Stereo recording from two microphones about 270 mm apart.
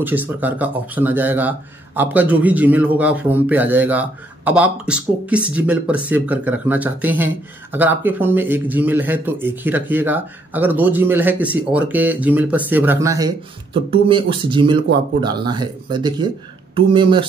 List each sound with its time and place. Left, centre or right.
0.0 s a man's voice: centre